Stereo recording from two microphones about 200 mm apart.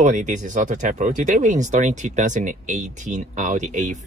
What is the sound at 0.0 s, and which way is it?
Speech, 40° right (ahead or behind).